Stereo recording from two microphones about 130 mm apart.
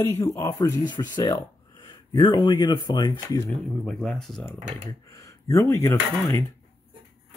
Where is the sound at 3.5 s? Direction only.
5° left (ahead or behind).